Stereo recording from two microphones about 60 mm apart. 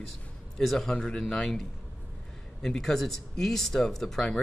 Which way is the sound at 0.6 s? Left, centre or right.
Centre.